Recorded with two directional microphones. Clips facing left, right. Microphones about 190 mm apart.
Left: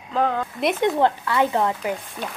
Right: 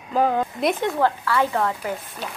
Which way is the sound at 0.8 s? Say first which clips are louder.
Left 2 dB; 20° left (ahead or behind).